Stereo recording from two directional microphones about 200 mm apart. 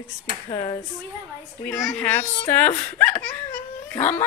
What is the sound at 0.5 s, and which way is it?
Speech, 15° left (ahead or behind).